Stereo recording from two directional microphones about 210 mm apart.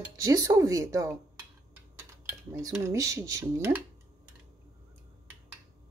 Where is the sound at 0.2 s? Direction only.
15° right (ahead or behind).